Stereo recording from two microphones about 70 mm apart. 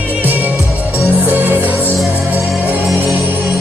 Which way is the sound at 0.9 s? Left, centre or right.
Right.